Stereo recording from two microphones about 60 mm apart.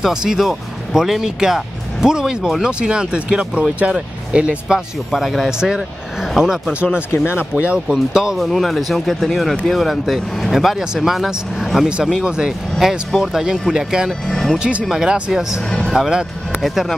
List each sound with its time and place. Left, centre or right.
0.0 s speech: centre
4.7 s speech: centre
6.7 s speech: right
7.1 s speech: left
7.5 s speech: centre
14.2 s speech: centre
14.6 s speech: right
14.9 s speech: centre